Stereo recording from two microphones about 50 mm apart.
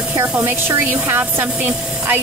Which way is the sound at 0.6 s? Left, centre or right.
Right.